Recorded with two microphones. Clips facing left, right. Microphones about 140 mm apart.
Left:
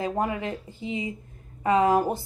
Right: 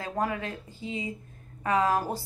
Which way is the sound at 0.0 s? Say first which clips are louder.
Left 3 dB; 20° left (ahead or behind).